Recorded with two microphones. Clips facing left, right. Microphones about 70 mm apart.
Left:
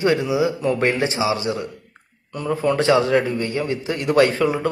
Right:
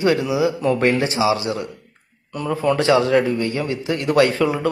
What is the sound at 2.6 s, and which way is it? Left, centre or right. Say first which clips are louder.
A man's voice: right 1 dB; left.